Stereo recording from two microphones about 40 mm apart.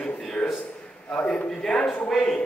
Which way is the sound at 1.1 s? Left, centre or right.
Left.